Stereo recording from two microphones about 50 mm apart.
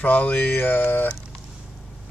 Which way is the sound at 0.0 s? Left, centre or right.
Left.